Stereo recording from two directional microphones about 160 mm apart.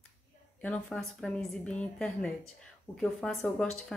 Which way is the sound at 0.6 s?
5° left (ahead or behind).